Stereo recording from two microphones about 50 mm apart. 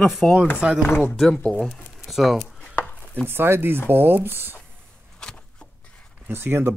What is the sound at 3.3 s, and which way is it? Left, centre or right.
Speech, right.